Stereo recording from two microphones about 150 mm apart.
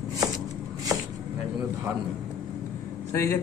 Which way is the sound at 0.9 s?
25° right (ahead or behind).